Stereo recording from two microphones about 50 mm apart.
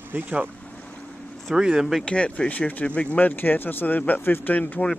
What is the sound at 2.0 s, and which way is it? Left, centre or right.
Speech, left.